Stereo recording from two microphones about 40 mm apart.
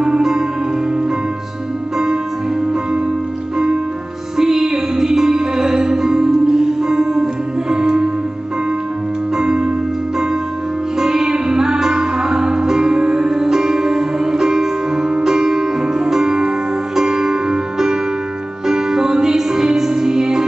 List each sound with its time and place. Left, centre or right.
0.0 s music: centre
4.4 s music: centre
9.4 s music: centre
11.0 s music: centre